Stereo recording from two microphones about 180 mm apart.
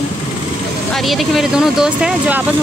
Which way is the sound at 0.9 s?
Centre (ahead or behind).